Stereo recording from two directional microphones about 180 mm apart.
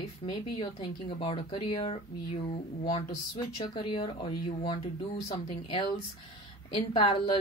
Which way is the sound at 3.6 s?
30° left (ahead or behind).